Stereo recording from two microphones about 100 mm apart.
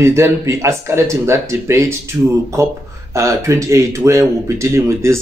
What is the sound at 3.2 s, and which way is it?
Speech, 30° right (ahead or behind).